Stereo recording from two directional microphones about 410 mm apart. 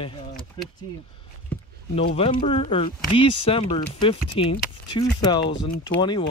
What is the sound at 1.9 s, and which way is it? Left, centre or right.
Speech, centre.